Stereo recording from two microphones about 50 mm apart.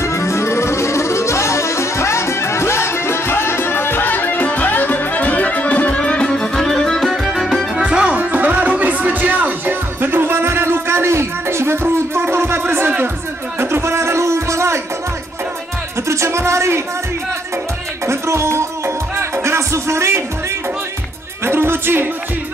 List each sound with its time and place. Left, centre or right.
0.0 s accordion: left
5.9 s music: centre
7.1 s music: centre
7.7 s music: centre
8.2 s music: right
16.1 s music: right
18.0 s music: right
21.5 s music: right